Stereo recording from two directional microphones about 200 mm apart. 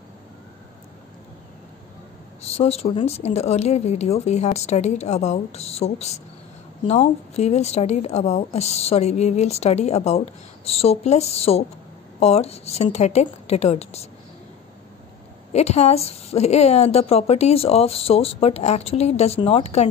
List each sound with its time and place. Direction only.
2.5 s speech: 30° left (ahead or behind)
15.5 s speech: 30° left (ahead or behind)